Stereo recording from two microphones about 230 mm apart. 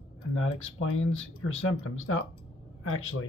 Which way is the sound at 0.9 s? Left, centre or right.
Left.